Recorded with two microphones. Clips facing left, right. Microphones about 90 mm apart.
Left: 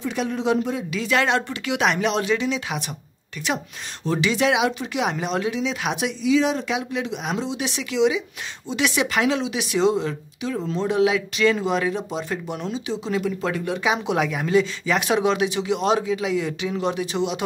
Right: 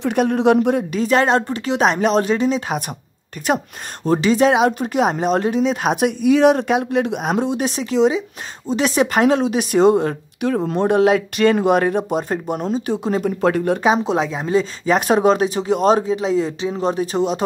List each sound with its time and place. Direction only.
0.0 s speech: 55° right (ahead or behind)
0.9 s a woman's voice: 40° right (ahead or behind)